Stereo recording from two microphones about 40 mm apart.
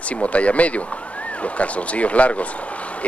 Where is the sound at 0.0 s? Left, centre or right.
Left.